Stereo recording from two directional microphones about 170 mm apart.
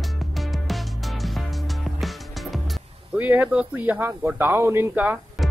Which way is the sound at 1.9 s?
Centre (ahead or behind).